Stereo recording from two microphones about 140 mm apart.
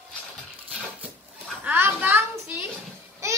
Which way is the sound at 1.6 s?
15° right (ahead or behind).